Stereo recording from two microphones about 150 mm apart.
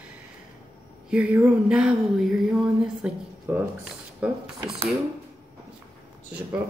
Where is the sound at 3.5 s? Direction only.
10° right (ahead or behind).